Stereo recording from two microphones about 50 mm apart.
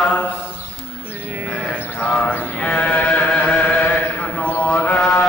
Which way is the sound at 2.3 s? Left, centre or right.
Left.